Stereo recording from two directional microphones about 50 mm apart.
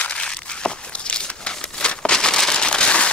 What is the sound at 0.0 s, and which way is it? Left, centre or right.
Crumpling, centre.